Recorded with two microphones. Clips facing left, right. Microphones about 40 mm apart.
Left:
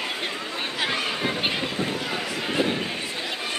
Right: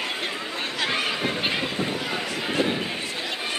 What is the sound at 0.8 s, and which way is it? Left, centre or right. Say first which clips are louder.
Chatter: right 1 dB; centre.